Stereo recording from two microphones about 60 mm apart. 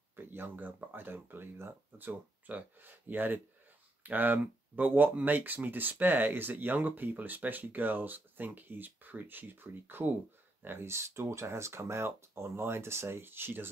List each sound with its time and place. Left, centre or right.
0.1 s speech: right